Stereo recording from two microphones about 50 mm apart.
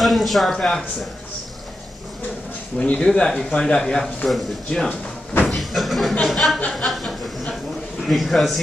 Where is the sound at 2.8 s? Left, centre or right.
Left.